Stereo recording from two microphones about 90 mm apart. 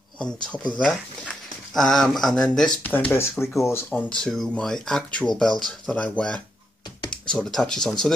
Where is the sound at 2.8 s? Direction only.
20° left (ahead or behind).